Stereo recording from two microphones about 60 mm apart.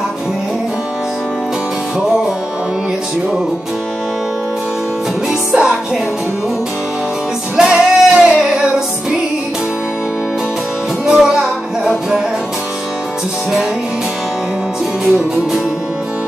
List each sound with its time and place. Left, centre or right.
5.5 s music: centre
7.5 s music: centre
11.1 s music: centre